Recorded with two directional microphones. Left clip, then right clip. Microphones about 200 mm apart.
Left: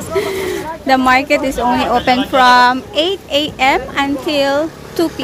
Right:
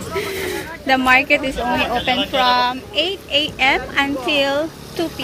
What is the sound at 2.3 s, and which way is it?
A woman's voice, 25° left (ahead or behind).